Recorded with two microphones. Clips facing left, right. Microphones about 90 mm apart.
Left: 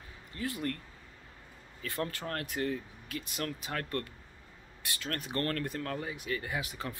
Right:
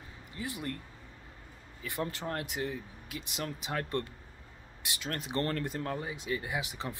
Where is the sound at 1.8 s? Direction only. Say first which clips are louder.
Even; 15° right (ahead or behind).